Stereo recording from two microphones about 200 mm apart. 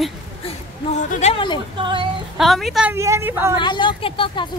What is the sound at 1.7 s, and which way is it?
Speech, 25° right (ahead or behind).